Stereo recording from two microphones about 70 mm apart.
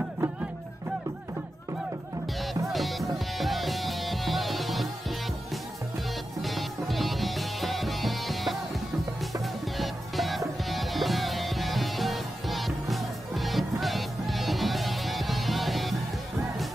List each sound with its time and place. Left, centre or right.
2.7 s music: centre